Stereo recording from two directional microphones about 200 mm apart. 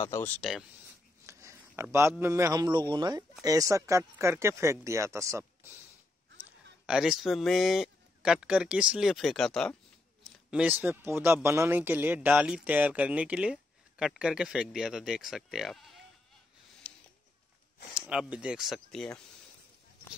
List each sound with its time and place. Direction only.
0.0 s speech: 15° left (ahead or behind)
0.4 s speech: centre (ahead or behind)
1.2 s a man's voice: 15° right (ahead or behind)
6.9 s speech: centre (ahead or behind)
16.8 s a sound: 5° left (ahead or behind)
17.9 s speech: 5° right (ahead or behind)